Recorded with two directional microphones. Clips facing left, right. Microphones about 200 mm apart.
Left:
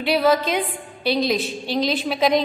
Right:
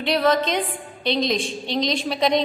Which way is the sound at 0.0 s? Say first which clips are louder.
Left 1 dB; 5° left (ahead or behind).